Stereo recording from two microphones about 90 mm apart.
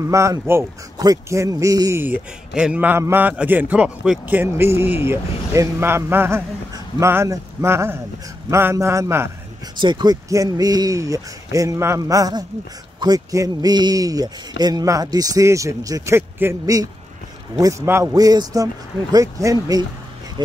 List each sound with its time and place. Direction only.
0.1 s a man's voice: 35° right (ahead or behind)
0.9 s a man's voice: 45° right (ahead or behind)
2.0 s a man's voice: 20° right (ahead or behind)
4.4 s a man's voice: 25° right (ahead or behind)
9.8 s speech: 60° right (ahead or behind)
10.3 s a man's voice: 40° right (ahead or behind)
16.2 s a man's voice: 25° right (ahead or behind)
16.6 s a man's voice: 40° right (ahead or behind)
17.8 s a man's voice: 30° right (ahead or behind)
18.1 s a man's voice: 45° right (ahead or behind)
20.4 s speech: 55° right (ahead or behind)